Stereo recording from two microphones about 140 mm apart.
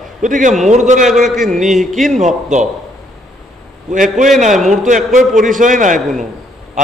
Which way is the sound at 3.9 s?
65° right (ahead or behind).